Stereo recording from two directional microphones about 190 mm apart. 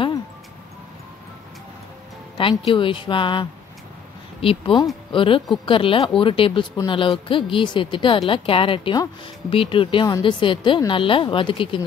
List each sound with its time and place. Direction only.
2.3 s speech: 25° left (ahead or behind)